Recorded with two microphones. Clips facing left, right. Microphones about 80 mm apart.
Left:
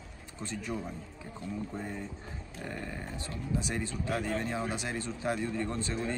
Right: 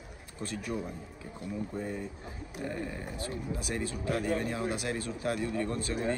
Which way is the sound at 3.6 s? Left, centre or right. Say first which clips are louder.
Right 1 dB; centre.